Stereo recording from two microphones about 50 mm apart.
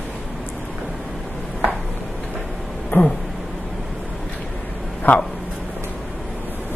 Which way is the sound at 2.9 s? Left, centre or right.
Left.